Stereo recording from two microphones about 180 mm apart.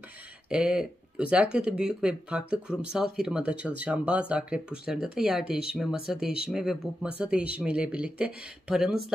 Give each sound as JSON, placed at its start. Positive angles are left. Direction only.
{"t": 0.5, "sound": "speech", "side_deg": -5}